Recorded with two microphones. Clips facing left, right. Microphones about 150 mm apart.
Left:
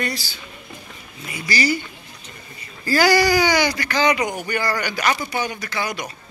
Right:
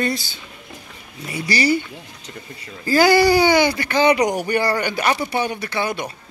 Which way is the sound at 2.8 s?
20° right (ahead or behind).